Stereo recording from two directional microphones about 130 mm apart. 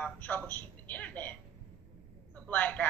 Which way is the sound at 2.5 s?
15° left (ahead or behind).